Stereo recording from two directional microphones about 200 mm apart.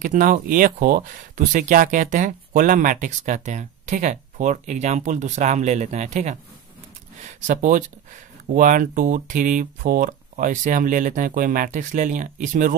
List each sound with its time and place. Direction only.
0.0 s speech: 40° right (ahead or behind)